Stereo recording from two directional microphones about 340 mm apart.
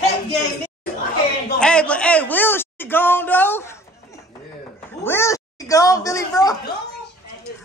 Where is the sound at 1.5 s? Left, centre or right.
Centre.